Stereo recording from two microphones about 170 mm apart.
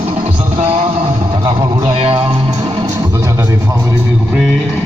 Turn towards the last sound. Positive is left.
turn(degrees=-20)  # may be behind; listen again after turning